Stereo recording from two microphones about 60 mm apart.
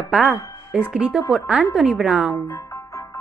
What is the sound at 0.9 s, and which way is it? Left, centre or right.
Speech, centre.